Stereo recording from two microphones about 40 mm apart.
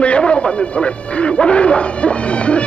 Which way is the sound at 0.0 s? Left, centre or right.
Left.